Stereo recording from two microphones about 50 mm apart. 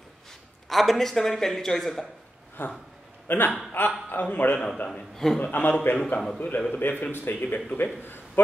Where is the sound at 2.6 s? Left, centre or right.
Left.